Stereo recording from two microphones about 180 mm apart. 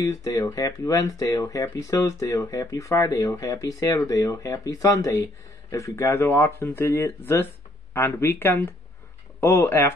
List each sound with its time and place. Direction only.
0.0 s speech: 20° left (ahead or behind)